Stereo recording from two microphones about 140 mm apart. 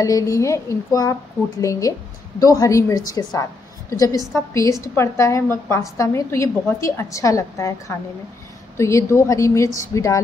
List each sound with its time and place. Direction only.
0.0 s a woman's voice: 25° left (ahead or behind)
8.7 s a woman's voice: 20° left (ahead or behind)